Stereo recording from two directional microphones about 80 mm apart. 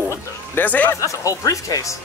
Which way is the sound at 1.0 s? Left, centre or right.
Left.